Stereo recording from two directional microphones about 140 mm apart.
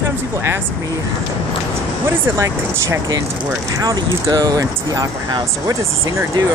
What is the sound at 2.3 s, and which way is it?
Speech, 20° right (ahead or behind).